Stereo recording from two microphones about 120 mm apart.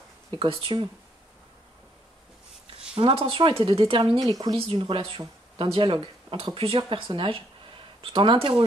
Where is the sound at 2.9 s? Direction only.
50° right (ahead or behind).